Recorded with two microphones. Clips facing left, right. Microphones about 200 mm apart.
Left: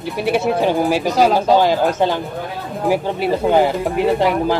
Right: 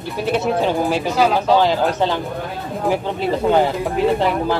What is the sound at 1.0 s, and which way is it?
Speech, 40° left (ahead or behind).